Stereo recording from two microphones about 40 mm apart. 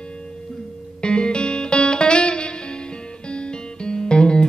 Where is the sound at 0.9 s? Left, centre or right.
Left.